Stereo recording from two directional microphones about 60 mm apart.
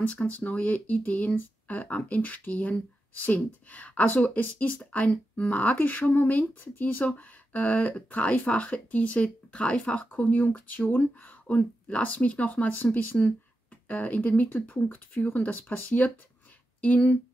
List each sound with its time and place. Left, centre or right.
0.0 s speech: left